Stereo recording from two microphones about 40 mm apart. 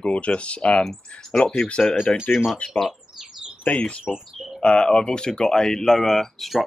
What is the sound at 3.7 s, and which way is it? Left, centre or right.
Speech, left.